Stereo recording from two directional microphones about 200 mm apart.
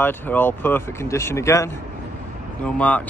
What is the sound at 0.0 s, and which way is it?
Speech, 10° left (ahead or behind).